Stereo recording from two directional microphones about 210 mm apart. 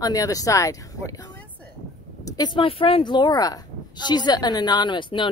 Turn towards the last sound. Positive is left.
turn(degrees=20)  # may be behind; listen again after turning